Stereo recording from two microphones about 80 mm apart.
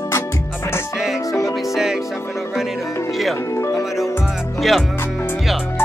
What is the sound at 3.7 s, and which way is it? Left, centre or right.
Music, centre.